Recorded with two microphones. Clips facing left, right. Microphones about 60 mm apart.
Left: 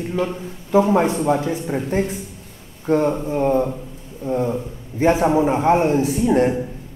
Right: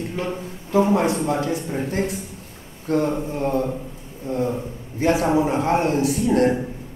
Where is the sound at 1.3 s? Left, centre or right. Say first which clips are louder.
Left 3 dB; left.